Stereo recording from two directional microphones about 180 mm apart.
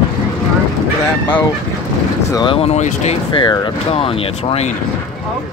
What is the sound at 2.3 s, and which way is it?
Speech, 30° left (ahead or behind).